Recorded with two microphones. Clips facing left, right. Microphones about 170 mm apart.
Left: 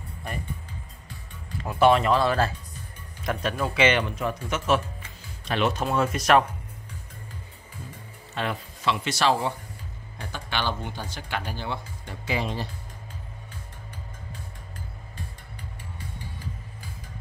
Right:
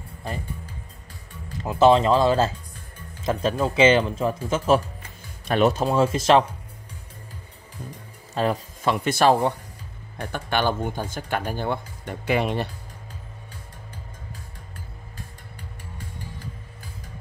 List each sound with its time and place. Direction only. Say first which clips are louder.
1.7 s speech: right 3 dB; 25° right (ahead or behind)
8.4 s speech: right 6 dB; 40° right (ahead or behind); by 12.6 s 60° right (ahead or behind)